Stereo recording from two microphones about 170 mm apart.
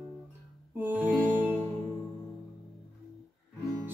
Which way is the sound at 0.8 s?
10° right (ahead or behind).